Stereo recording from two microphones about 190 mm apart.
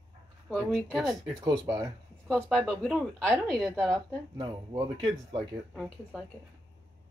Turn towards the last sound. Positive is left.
turn(degrees=0)  # may be behind; listen again after turning